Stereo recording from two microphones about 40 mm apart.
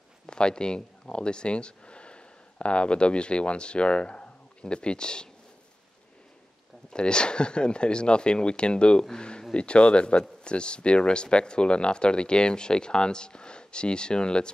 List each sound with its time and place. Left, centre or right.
0.3 s speech: left
6.9 s speech: left